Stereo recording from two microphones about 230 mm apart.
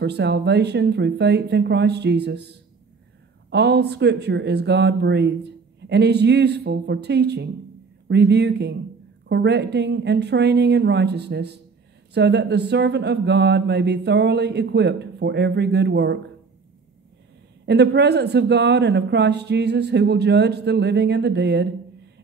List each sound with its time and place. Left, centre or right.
0.0 s speech: right
17.6 s speech: right